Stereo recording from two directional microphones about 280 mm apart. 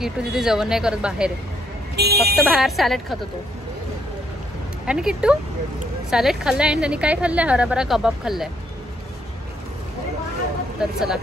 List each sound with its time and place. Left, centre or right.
0.0 s a woman's voice: centre
2.0 s vehicle: right
2.3 s a woman's voice: centre
4.8 s a woman's voice: centre
10.8 s a woman's voice: centre